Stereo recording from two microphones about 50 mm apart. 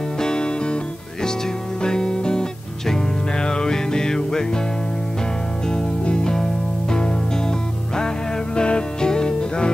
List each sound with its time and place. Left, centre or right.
0.2 s music: centre
1.8 s music: centre
5.7 s music: centre